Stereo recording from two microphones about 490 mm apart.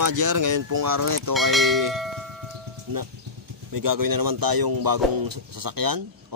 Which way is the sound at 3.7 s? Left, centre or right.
Right.